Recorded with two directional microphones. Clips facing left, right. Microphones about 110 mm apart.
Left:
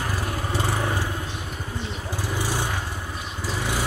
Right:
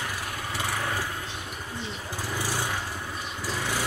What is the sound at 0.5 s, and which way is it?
Vehicle, 30° left (ahead or behind).